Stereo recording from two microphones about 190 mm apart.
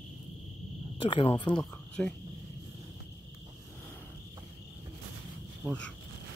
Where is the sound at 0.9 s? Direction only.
25° left (ahead or behind).